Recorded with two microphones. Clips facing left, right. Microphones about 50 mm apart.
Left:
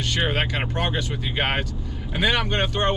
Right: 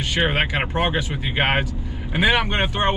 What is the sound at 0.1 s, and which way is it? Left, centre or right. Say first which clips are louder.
Speech: right 4 dB; centre.